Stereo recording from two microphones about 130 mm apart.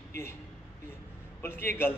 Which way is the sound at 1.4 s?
15° left (ahead or behind).